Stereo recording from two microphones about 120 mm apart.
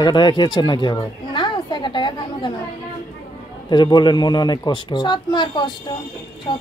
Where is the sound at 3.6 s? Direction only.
40° left (ahead or behind).